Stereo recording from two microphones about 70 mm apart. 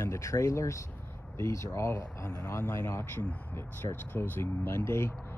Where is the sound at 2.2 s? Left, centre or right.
Left.